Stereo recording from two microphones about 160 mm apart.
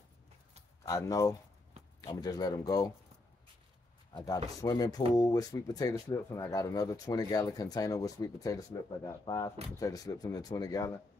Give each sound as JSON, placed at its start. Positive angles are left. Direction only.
{"t": 0.8, "sound": "speech", "side_deg": 20}
{"t": 4.1, "sound": "speech", "side_deg": 20}